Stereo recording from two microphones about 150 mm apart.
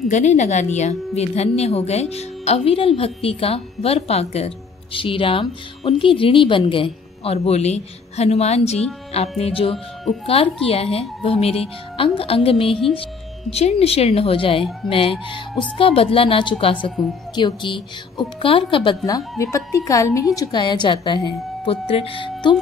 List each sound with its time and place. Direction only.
0.1 s a woman's voice: 50° left (ahead or behind); by 18.9 s 35° left (ahead or behind)
19.0 s a woman's voice: 20° left (ahead or behind)